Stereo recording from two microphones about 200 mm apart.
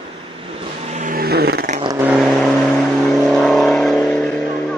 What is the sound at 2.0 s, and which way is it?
Vehicle, centre (ahead or behind).